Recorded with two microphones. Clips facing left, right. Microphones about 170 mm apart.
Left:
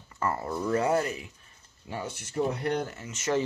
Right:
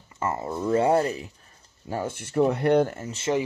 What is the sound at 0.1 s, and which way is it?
Speech, 20° right (ahead or behind).